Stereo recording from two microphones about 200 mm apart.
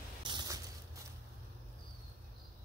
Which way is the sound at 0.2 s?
20° right (ahead or behind).